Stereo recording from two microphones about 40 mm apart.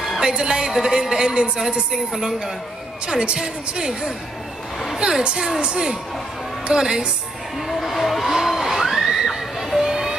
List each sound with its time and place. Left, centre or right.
0.2 s a woman's voice: right
7.5 s a sound: centre
9.8 s music: centre